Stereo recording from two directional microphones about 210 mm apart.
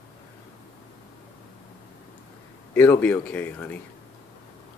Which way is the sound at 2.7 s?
10° left (ahead or behind).